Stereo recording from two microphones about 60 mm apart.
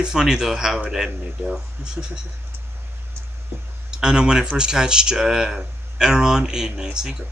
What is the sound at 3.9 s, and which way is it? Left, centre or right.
Speech, centre.